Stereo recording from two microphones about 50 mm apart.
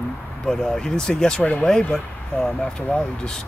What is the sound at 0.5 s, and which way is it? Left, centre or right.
Speech, centre.